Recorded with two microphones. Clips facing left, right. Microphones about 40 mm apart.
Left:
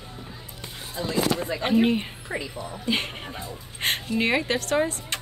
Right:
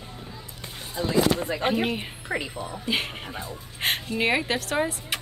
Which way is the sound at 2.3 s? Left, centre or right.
Right.